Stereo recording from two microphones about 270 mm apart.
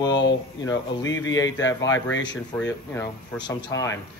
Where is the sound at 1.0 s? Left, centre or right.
Left.